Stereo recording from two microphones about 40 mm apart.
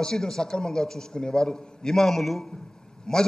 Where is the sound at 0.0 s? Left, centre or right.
Centre.